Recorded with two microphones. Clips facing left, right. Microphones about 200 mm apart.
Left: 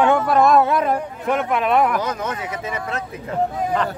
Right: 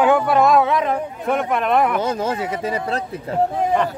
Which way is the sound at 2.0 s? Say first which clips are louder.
Right 3 dB; 30° right (ahead or behind).